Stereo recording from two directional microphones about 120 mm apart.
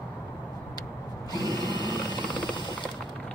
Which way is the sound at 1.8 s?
35° left (ahead or behind).